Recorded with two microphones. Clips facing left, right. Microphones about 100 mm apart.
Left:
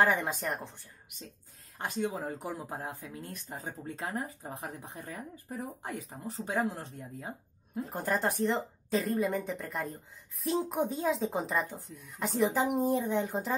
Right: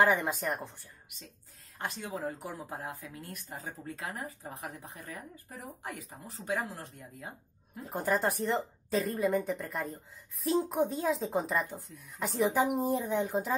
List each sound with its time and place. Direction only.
0.0 s speech: 5° right (ahead or behind)
1.8 s speech: 20° left (ahead or behind)
7.9 s speech: centre (ahead or behind)